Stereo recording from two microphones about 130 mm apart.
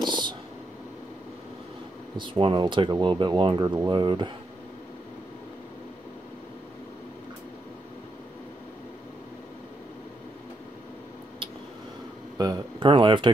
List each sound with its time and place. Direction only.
0.1 s a sound: 35° right (ahead or behind)
2.1 s speech: 40° right (ahead or behind)
12.4 s speech: 35° right (ahead or behind)